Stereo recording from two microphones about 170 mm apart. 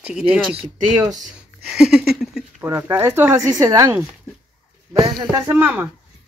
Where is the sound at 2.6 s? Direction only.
15° right (ahead or behind).